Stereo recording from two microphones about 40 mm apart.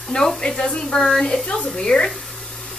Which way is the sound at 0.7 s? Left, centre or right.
Left.